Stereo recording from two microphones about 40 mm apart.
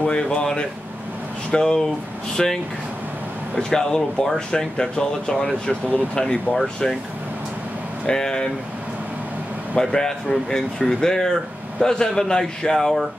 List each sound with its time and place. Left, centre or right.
0.0 s speech: left
6.5 s speech: centre
8.1 s speech: centre
9.8 s speech: centre